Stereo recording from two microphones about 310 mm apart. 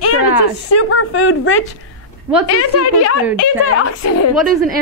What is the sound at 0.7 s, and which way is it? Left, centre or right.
A woman's voice, left.